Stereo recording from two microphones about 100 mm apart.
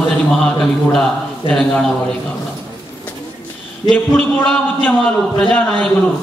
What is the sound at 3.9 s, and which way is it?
Speech, 10° left (ahead or behind).